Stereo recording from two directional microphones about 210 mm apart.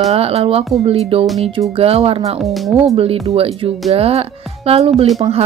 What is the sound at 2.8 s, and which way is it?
Speech, 25° right (ahead or behind).